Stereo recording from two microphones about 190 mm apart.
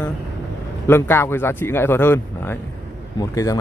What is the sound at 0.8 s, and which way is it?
Speech, 10° left (ahead or behind).